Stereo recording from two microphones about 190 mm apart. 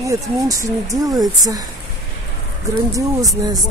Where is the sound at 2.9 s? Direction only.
20° right (ahead or behind).